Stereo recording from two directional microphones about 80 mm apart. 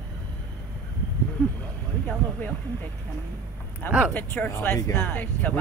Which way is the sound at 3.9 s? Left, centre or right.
Centre.